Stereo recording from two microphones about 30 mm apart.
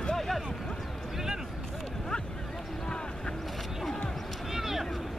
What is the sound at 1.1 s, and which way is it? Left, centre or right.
Vehicle, centre.